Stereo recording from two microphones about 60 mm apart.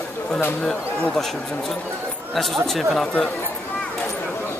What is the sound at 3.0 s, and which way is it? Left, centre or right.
Speech, centre.